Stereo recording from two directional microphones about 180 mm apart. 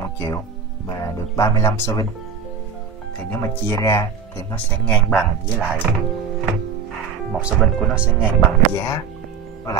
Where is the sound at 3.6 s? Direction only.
15° left (ahead or behind).